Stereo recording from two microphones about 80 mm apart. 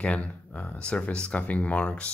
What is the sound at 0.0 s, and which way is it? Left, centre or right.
Speech, centre.